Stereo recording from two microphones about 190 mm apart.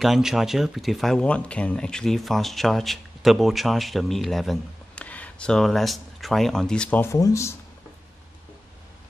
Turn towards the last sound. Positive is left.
turn(degrees=15)  # may be behind; listen again after turning